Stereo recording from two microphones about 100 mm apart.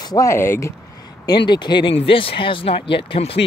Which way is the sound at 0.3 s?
25° left (ahead or behind).